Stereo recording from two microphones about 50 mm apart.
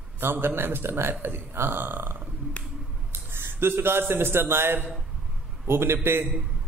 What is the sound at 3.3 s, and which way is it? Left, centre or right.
A man's voice, right.